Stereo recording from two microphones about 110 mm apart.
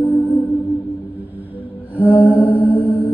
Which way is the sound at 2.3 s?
15° right (ahead or behind).